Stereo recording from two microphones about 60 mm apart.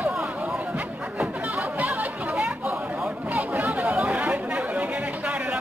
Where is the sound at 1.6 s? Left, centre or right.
Right.